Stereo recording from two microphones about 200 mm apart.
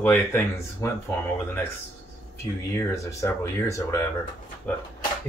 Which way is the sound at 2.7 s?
15° left (ahead or behind).